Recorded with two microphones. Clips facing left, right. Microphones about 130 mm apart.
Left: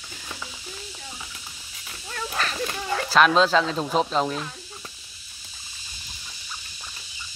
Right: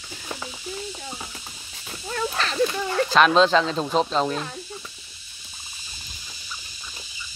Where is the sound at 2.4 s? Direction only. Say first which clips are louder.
Right 7 dB; 35° right (ahead or behind).